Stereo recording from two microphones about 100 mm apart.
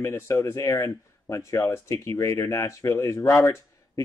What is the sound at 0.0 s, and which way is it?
Speech, 30° left (ahead or behind).